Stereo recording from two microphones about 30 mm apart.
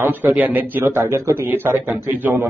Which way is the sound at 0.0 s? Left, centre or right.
Right.